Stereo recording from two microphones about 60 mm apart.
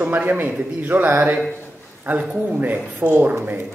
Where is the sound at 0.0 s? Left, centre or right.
Right.